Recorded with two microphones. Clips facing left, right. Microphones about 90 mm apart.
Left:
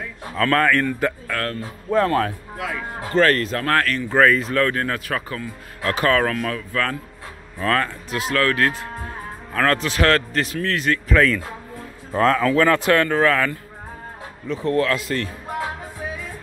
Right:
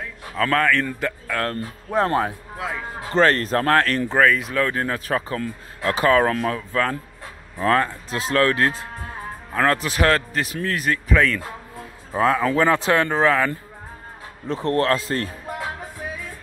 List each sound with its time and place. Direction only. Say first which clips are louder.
0.4 s speech: left 1 dB; centre (ahead or behind)
1.3 s speech: right 1 dB; 20° right (ahead or behind)
4.1 s speech: left 4 dB; 5° right (ahead or behind)
4.7 s speech: even; 20° right (ahead or behind)
5.0 s speech: right 3 dB; 30° right (ahead or behind)
5.9 s speech: right 2 dB; 20° right (ahead or behind)
11.1 s speech: left 2 dB; centre (ahead or behind); by 13.5 s 15° right (ahead or behind)
14.4 s speech: even; 30° right (ahead or behind)